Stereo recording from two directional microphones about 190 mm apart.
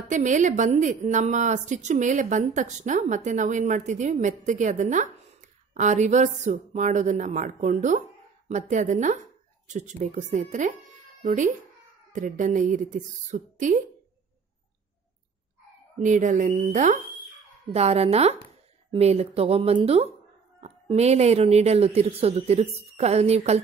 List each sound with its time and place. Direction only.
0.1 s a woman's voice: 40° right (ahead or behind)
16.0 s a woman's voice: 40° right (ahead or behind)